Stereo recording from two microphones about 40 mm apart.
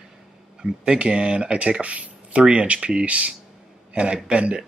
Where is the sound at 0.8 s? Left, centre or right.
Right.